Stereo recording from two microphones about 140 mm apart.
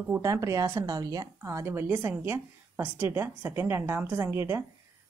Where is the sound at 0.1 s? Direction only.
20° right (ahead or behind).